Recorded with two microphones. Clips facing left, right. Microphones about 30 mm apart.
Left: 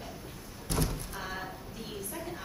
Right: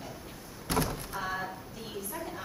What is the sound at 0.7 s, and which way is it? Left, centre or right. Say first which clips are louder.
Door: right 3 dB; right.